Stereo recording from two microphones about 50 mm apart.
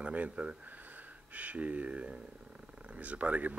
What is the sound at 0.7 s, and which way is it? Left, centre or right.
Speech, right.